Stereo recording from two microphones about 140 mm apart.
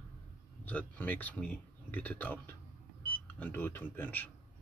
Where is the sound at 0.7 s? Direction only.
10° left (ahead or behind).